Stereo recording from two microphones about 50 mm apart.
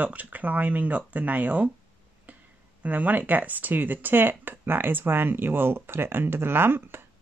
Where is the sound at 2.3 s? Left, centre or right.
Right.